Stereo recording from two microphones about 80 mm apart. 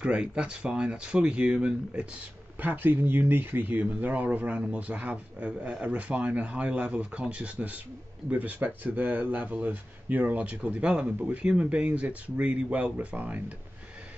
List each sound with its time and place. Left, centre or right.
0.0 s speech: centre